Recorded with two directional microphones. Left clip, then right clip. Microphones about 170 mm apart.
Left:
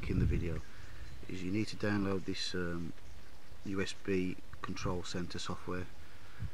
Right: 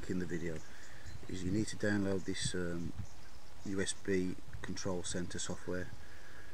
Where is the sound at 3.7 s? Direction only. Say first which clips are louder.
Even; 10° left (ahead or behind).